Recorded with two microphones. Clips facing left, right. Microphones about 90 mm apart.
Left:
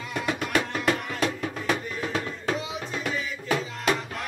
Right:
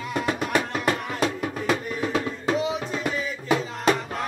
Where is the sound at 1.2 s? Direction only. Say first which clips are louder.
Right 3 dB; 15° right (ahead or behind).